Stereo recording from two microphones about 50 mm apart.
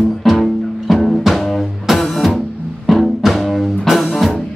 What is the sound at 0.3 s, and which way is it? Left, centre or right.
Music, centre.